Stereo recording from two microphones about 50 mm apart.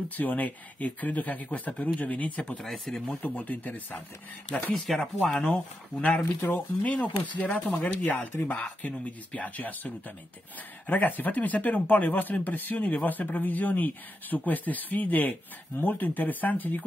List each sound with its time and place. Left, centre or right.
0.1 s speech: left
2.5 s speech: centre
3.2 s speech: left
4.7 s speech: centre
5.3 s speech: centre
6.4 s speech: left